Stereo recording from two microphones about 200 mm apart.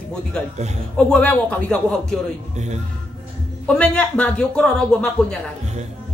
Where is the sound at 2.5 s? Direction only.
35° right (ahead or behind).